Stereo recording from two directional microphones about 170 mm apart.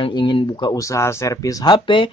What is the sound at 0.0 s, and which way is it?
Speech, 30° left (ahead or behind).